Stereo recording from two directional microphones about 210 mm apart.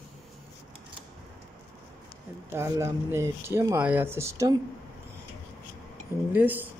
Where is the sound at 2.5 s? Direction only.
15° right (ahead or behind).